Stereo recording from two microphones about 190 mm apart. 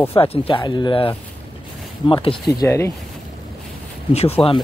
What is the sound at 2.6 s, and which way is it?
Speech, 15° left (ahead or behind).